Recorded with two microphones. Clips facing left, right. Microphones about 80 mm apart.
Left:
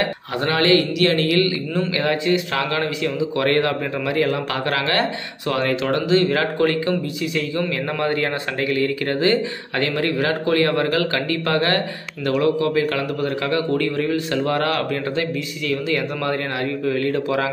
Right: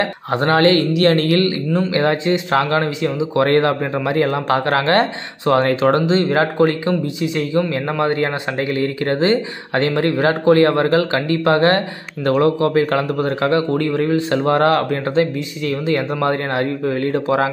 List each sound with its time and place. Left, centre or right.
0.0 s a man's voice: right